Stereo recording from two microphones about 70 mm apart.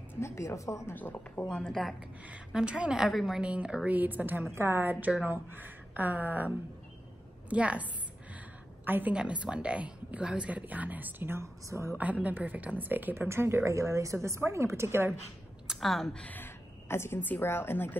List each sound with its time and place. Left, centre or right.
0.2 s a woman's voice: left
0.9 s a woman's voice: left
1.7 s a woman's voice: centre
2.5 s a woman's voice: centre
3.4 s a woman's voice: centre
9.1 s speech: centre; by 11.9 s right
12.0 s a woman's voice: right
15.8 s a woman's voice: centre
16.2 s a woman's voice: left